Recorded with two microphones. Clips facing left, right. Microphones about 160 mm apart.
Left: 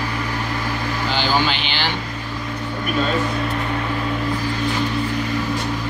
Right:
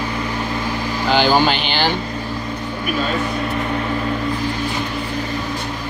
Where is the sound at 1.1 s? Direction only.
45° right (ahead or behind).